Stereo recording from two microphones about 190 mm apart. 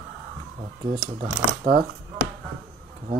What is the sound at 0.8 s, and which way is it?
Speech, 35° right (ahead or behind).